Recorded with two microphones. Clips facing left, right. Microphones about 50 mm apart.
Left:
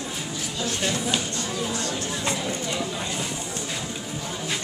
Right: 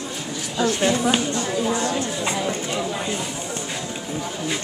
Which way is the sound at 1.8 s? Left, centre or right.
Centre.